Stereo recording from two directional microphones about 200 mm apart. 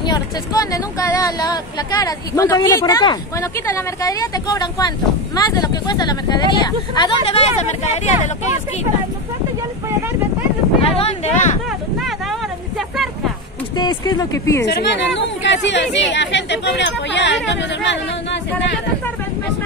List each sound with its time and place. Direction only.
0.0 s speech: 20° left (ahead or behind)
10.8 s speech: 30° left (ahead or behind)
12.0 s a sound: centre (ahead or behind)
13.7 s speech: 20° left (ahead or behind)
14.6 s speech: 60° left (ahead or behind)